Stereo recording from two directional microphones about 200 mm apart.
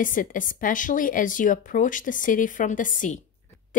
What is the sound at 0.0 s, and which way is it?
A woman's voice, 40° left (ahead or behind).